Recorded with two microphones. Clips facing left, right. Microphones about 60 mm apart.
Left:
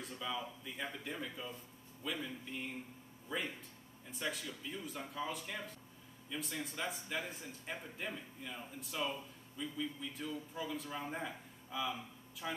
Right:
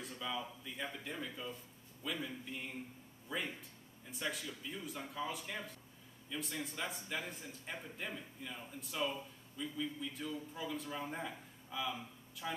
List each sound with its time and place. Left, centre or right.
0.0 s a man's voice: centre